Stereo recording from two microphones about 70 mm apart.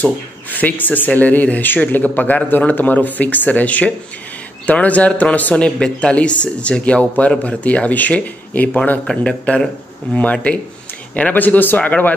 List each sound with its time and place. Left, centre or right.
0.0 s a man's voice: left
9.0 s a man's voice: centre
10.1 s a man's voice: centre